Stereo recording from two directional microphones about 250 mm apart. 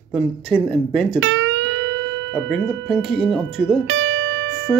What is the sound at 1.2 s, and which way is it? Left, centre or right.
Music, right.